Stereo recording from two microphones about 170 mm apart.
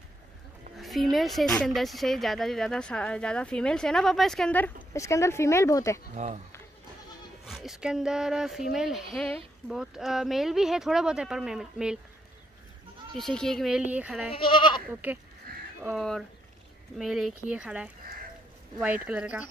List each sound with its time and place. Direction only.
0.7 s speech: centre (ahead or behind); by 5.9 s 20° left (ahead or behind)
6.1 s speech: 40° right (ahead or behind)
7.4 s speech: centre (ahead or behind)
13.1 s speech: 5° left (ahead or behind)
14.3 s goat: 30° left (ahead or behind)
14.9 s speech: 10° right (ahead or behind)